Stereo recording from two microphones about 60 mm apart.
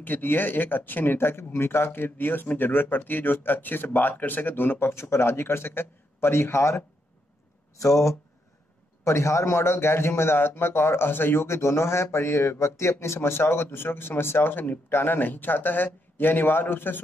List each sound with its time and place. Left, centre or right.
0.0 s a man's voice: left
7.8 s speech: left
9.0 s a man's voice: left